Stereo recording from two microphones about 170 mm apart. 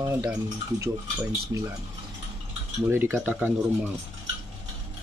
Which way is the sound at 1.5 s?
15° right (ahead or behind).